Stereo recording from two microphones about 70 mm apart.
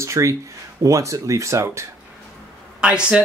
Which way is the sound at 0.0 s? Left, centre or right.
Right.